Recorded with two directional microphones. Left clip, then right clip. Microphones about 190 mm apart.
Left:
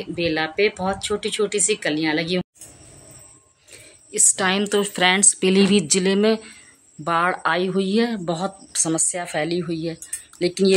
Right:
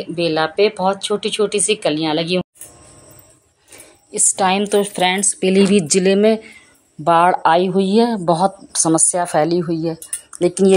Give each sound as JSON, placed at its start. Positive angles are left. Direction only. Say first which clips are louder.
{"t": 0.0, "sound": "speech", "louder": "right 5 dB", "side_deg": -10}
{"t": 3.7, "sound": "a woman's voice", "louder": "right 1 dB", "side_deg": 0}